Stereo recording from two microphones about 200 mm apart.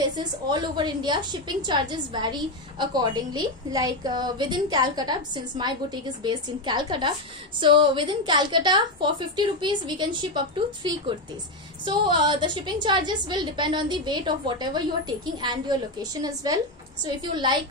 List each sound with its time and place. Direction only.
0.2 s a woman's voice: 20° right (ahead or behind)